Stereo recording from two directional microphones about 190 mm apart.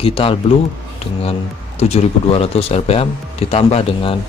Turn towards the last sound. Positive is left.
turn(degrees=30)  # may be behind; listen again after turning